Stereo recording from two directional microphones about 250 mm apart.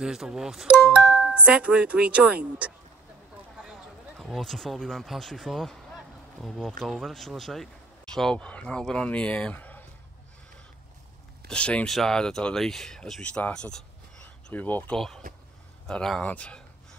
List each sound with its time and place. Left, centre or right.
0.0 s speech: centre
3.5 s a sound: centre
6.8 s speech: centre
11.4 s speech: centre